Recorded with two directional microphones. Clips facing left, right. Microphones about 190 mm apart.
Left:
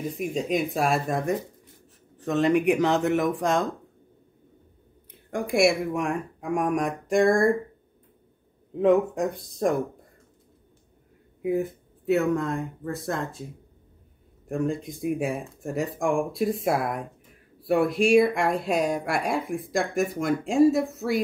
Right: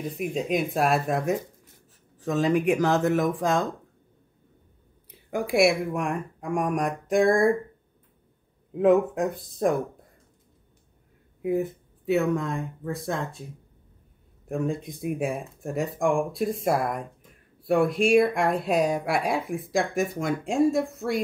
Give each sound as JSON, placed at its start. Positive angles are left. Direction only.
{"t": 0.0, "sound": "speech", "side_deg": 0}
{"t": 5.3, "sound": "speech", "side_deg": 0}
{"t": 8.7, "sound": "speech", "side_deg": 0}
{"t": 11.4, "sound": "speech", "side_deg": 0}
{"t": 14.5, "sound": "speech", "side_deg": 0}